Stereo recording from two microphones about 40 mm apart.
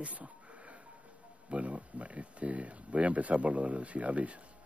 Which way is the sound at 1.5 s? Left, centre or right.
Right.